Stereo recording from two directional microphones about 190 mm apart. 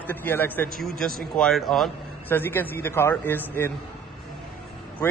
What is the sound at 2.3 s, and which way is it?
A man's voice, 10° left (ahead or behind).